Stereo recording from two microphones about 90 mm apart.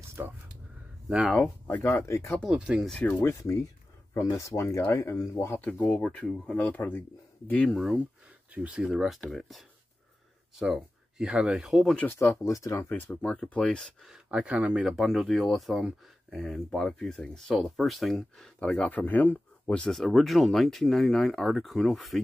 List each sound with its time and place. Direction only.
0.2 s a sound: 30° right (ahead or behind)
1.0 s speech: 10° right (ahead or behind)
1.3 s speech: 15° left (ahead or behind)
1.8 s speech: 35° left (ahead or behind)
2.5 s speech: 10° right (ahead or behind)
3.0 s speech: 20° left (ahead or behind); by 6.6 s 5° left (ahead or behind)
6.6 s speech: 20° left (ahead or behind)
7.6 s speech: centre (ahead or behind)
10.6 s speech: 5° right (ahead or behind)
12.1 s speech: 30° left (ahead or behind)
13.2 s speech: 15° left (ahead or behind)
14.0 s speech: 10° right (ahead or behind)
14.9 s speech: centre (ahead or behind)